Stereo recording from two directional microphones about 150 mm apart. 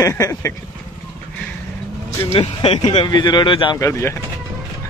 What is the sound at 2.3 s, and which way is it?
Speech, 40° left (ahead or behind).